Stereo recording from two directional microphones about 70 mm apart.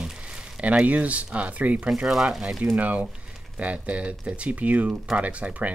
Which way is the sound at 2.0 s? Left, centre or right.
Centre.